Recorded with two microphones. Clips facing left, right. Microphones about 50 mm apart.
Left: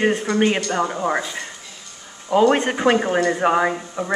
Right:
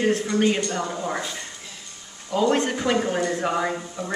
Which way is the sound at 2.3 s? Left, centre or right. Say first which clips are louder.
Left 5 dB; left.